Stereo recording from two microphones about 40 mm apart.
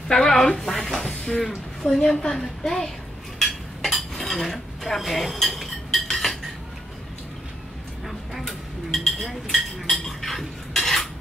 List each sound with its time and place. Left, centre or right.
0.1 s speech: centre
1.0 s speech: centre
3.3 s dishes: centre
8.3 s a sound: centre